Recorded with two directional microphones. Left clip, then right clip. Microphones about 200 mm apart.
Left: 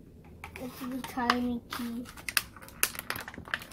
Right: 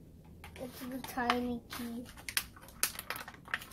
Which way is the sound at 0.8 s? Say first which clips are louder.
Left 6 dB; 15° left (ahead or behind).